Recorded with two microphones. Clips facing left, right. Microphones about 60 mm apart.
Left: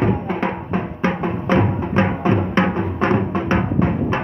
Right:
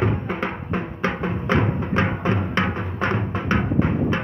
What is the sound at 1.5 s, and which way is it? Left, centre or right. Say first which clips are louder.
Music: left 4 dB; centre.